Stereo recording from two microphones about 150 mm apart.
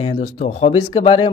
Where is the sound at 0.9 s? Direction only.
35° left (ahead or behind).